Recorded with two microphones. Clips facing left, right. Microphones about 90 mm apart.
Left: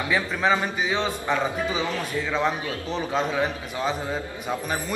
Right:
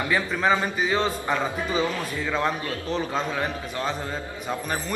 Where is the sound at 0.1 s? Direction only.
5° left (ahead or behind).